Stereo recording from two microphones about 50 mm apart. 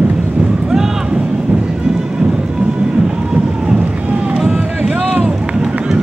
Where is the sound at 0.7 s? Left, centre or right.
Centre.